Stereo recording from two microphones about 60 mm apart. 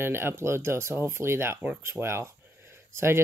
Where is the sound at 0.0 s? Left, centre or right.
Right.